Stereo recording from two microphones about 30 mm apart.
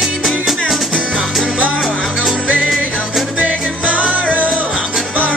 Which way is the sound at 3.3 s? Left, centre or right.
Right.